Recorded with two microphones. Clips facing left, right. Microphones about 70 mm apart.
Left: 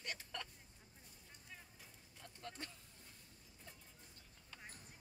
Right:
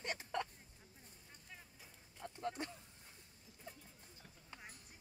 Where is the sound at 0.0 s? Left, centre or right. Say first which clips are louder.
Right 7 dB; right.